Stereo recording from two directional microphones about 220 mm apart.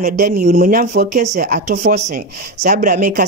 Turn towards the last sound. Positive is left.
turn(degrees=-40)  # may be behind; listen again after turning